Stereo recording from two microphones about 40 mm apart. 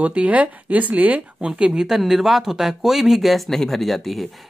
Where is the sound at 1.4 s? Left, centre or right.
Right.